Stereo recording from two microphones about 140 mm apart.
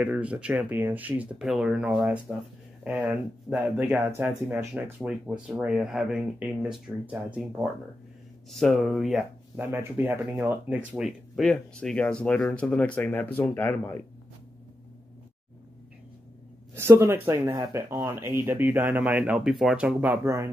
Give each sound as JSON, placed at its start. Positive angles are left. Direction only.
{"t": 0.0, "sound": "speech", "side_deg": -10}
{"t": 5.0, "sound": "speech", "side_deg": -5}
{"t": 8.5, "sound": "speech", "side_deg": 0}
{"t": 9.6, "sound": "speech", "side_deg": -15}
{"t": 16.7, "sound": "speech", "side_deg": -20}